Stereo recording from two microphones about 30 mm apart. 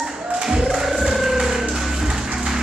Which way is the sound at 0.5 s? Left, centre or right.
Centre.